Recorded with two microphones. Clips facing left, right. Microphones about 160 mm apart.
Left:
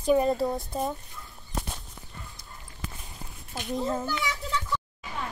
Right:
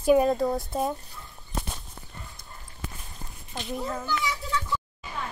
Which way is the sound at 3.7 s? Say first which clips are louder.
Left 4 dB; 25° left (ahead or behind).